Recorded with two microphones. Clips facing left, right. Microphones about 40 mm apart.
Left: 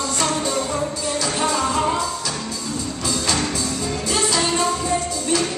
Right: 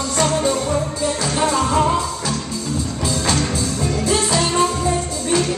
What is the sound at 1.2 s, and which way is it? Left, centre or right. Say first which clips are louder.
Music: right 2 dB; right.